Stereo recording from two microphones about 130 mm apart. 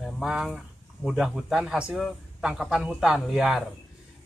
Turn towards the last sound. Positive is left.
turn(degrees=-5)  # may be behind; listen again after turning